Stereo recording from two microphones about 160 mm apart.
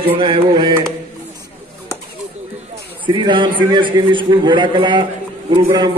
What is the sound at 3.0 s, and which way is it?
A man's voice, 30° right (ahead or behind).